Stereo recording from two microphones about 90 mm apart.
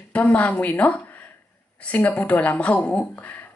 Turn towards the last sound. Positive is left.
turn(degrees=15)  # may be behind; listen again after turning